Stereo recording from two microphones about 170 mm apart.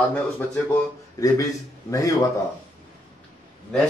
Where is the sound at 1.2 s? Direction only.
20° left (ahead or behind).